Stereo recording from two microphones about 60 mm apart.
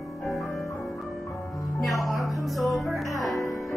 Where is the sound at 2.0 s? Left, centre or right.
Centre.